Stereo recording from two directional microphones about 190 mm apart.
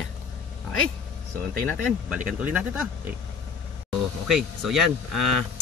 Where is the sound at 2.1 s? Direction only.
5° right (ahead or behind).